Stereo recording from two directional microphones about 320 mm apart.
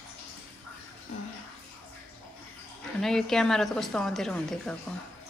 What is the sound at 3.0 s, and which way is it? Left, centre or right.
A woman's voice, centre.